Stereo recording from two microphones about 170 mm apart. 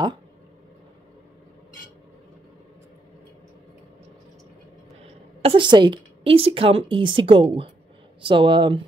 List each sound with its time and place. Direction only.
5.4 s a woman's voice: 30° right (ahead or behind)